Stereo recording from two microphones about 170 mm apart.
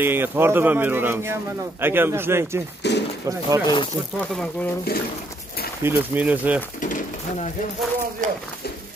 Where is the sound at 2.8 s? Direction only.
85° left.